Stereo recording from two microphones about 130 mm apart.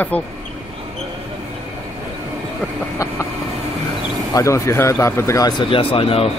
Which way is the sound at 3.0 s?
25° left (ahead or behind).